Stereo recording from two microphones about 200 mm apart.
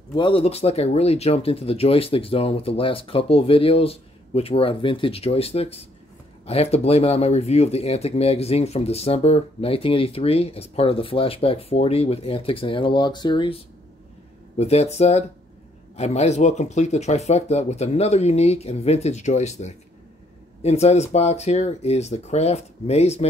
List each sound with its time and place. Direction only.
0.1 s speech: 25° left (ahead or behind)
14.6 s speech: 30° left (ahead or behind)